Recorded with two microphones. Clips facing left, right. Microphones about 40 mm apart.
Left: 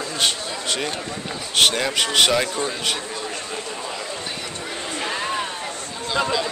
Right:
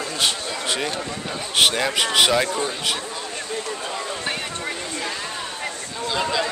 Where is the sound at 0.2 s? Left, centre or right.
Centre.